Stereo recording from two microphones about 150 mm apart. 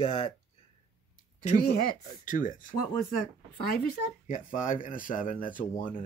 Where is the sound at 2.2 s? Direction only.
60° left (ahead or behind).